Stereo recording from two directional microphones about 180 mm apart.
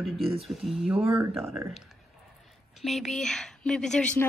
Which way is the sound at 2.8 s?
Centre (ahead or behind).